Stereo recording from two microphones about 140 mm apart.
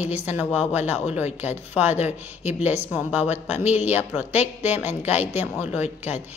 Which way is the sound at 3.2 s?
50° left (ahead or behind).